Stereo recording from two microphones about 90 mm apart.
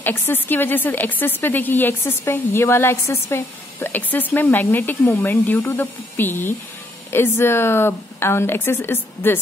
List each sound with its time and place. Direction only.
0.0 s a woman's voice: 20° left (ahead or behind)